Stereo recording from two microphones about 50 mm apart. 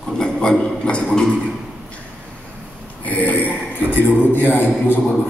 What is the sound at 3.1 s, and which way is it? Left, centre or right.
A man's voice, left.